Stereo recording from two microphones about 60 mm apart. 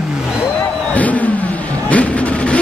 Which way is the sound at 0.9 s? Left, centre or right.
Left.